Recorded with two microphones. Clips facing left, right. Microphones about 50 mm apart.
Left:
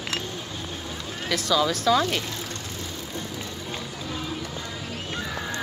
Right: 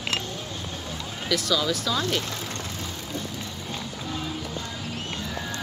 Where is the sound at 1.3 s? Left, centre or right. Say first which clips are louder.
Left 2 dB; left.